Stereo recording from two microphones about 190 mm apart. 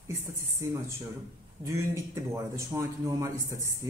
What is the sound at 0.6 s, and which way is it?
Speech, 15° right (ahead or behind).